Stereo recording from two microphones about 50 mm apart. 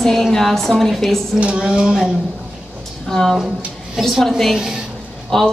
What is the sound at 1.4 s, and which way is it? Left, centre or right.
Speech, right.